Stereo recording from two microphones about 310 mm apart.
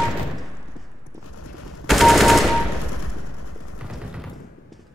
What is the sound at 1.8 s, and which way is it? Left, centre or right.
Machine gun, centre.